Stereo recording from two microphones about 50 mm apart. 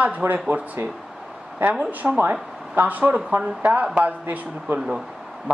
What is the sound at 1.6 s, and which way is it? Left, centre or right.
A woman's voice, right.